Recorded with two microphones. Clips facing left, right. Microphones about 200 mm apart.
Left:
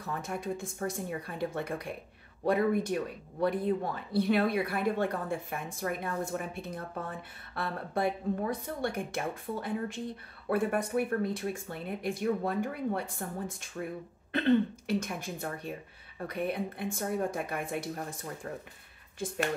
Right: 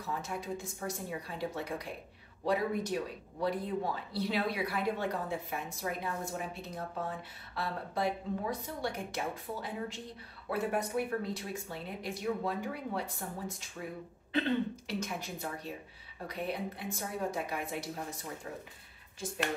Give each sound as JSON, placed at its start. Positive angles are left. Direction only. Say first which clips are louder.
{"t": 0.0, "sound": "speech", "louder": "left 3 dB", "side_deg": 55}
{"t": 14.9, "sound": "speech", "louder": "left 5 dB", "side_deg": 55}